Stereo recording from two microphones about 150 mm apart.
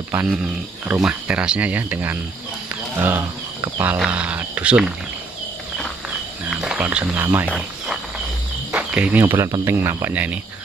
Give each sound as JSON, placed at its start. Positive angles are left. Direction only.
{"t": 0.3, "sound": "speech", "side_deg": -5}
{"t": 6.5, "sound": "speech", "side_deg": -5}
{"t": 7.4, "sound": "cricket", "side_deg": 0}
{"t": 9.2, "sound": "speech", "side_deg": -20}